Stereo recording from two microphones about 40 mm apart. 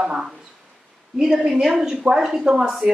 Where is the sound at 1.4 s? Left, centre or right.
Centre.